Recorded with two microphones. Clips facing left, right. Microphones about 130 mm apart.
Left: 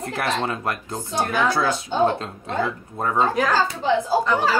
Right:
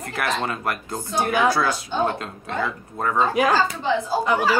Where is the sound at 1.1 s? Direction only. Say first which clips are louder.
Right 2 dB; 10° right (ahead or behind).